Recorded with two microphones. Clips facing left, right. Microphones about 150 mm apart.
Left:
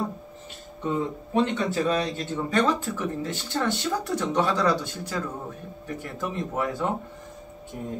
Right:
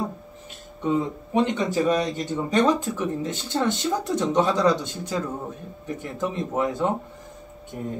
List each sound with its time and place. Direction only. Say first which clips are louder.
0.8 s speech: right 3 dB; 15° right (ahead or behind)